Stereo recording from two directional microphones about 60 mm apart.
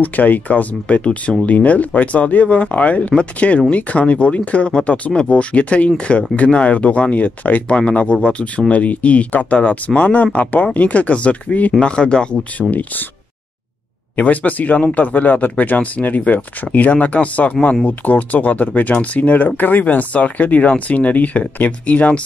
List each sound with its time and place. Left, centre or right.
0.0 s speech: left
14.1 s speech: left